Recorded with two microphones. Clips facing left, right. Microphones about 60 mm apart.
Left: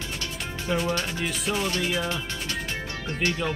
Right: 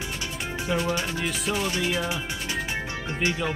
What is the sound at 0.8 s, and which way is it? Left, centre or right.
Speech, centre.